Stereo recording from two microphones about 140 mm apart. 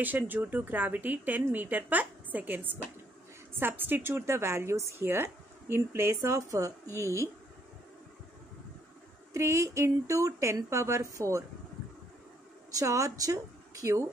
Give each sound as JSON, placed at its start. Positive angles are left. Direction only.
{"t": 0.0, "sound": "a woman's voice", "side_deg": -15}
{"t": 9.3, "sound": "a woman's voice", "side_deg": -20}
{"t": 12.7, "sound": "a woman's voice", "side_deg": -25}